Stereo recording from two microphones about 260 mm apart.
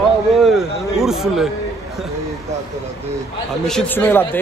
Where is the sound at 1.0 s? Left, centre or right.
Centre.